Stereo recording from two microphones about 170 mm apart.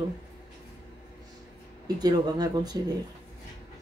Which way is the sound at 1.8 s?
25° right (ahead or behind).